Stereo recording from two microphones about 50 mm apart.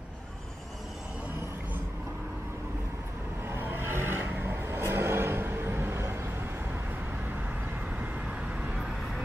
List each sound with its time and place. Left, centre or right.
3.4 s vehicle: right